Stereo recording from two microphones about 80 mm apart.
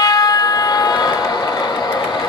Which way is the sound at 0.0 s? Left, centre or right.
Left.